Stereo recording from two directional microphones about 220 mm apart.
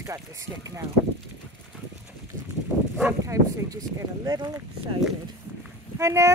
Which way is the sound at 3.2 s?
15° right (ahead or behind).